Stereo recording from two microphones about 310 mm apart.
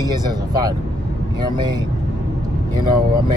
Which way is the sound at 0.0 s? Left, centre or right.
Centre.